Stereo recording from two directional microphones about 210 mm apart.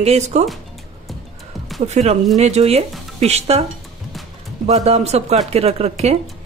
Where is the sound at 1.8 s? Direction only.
30° right (ahead or behind).